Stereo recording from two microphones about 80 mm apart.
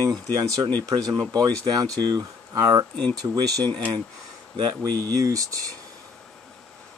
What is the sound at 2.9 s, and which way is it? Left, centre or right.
Speech, centre.